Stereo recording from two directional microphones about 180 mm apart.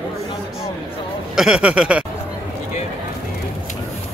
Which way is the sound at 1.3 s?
5° right (ahead or behind).